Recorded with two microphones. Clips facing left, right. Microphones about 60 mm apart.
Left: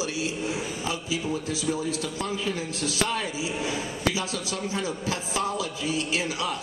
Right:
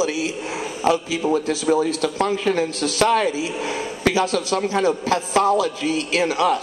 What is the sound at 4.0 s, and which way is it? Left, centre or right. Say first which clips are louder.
A man's voice: right 11 dB; right.